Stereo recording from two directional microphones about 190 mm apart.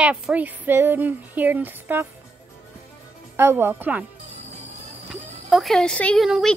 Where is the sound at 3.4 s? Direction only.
10° right (ahead or behind).